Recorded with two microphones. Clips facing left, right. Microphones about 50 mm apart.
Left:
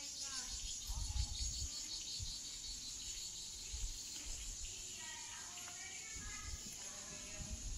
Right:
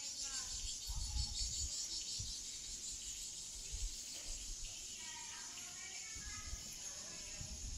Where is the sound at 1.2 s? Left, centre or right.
Centre.